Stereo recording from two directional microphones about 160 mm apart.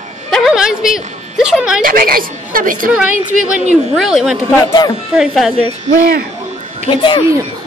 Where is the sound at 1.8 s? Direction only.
65° right (ahead or behind).